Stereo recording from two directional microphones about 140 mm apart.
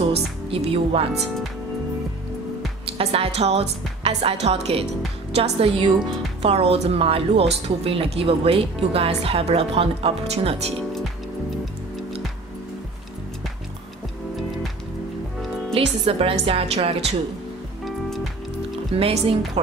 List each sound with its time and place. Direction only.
0.1 s speech: 45° right (ahead or behind)
3.0 s a woman's voice: 50° right (ahead or behind)
15.7 s a woman's voice: 45° right (ahead or behind)
18.9 s a woman's voice: 45° right (ahead or behind)